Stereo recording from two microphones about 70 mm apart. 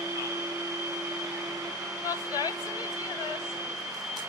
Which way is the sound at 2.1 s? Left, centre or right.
Left.